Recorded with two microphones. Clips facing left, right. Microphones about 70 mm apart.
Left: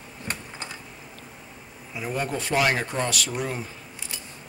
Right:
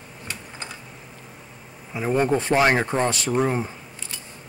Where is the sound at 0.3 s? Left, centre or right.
Left.